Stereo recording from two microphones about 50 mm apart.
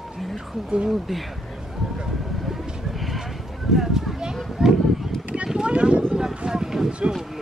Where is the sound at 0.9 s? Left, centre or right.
Centre.